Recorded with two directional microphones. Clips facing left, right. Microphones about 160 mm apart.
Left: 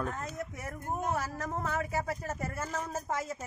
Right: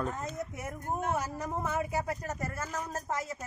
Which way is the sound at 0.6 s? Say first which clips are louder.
Right 1 dB; 20° right (ahead or behind).